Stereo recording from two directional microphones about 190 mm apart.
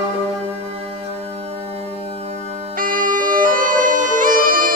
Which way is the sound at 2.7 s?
45° right (ahead or behind).